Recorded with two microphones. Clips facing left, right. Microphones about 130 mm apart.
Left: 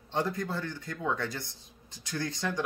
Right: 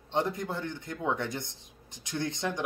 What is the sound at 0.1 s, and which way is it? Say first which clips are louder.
A man's voice: right 1 dB; 20° right (ahead or behind).